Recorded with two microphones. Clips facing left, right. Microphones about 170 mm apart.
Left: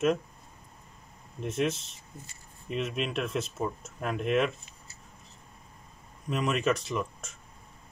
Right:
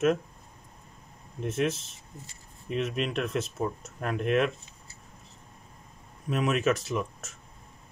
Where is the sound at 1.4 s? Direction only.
Centre (ahead or behind).